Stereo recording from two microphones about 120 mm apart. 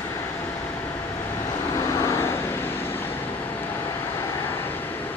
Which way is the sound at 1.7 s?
25° left (ahead or behind).